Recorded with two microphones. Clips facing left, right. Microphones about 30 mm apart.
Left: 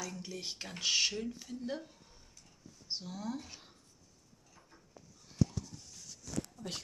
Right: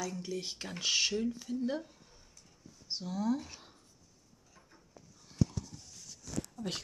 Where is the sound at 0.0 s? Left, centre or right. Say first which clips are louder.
Right 4 dB; centre.